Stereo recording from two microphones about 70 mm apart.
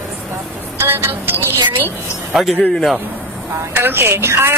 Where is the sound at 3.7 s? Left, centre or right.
Right.